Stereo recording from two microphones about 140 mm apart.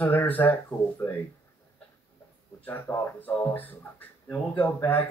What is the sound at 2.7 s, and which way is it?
Speech, 15° left (ahead or behind).